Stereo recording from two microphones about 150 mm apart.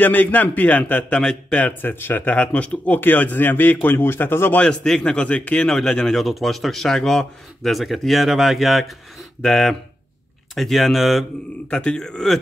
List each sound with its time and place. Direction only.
0.0 s a man's voice: 10° left (ahead or behind)